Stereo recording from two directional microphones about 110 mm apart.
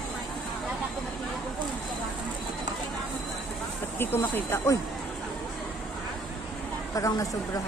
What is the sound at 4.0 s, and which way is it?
Speech, 20° left (ahead or behind).